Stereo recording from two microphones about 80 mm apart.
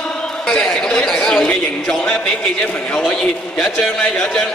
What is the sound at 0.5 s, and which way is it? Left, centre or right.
A man's voice, centre.